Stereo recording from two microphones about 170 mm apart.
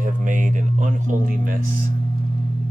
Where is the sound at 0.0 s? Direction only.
50° right (ahead or behind).